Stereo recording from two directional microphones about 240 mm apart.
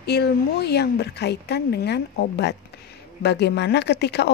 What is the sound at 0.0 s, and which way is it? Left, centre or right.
Speech, left.